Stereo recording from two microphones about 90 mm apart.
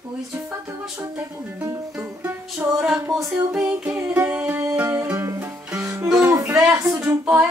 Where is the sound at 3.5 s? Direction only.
10° right (ahead or behind).